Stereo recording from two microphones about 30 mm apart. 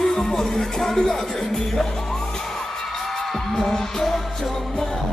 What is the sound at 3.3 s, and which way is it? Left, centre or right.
Music, centre.